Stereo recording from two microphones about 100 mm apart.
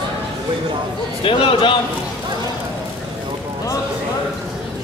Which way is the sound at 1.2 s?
60° left (ahead or behind).